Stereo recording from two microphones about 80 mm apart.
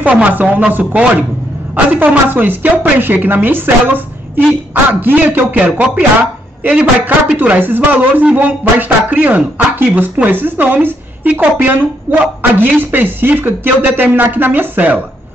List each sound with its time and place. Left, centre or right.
0.0 s a woman's voice: centre